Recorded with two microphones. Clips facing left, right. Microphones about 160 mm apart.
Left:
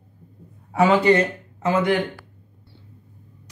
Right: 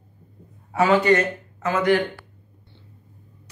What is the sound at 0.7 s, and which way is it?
Speech, 30° left (ahead or behind).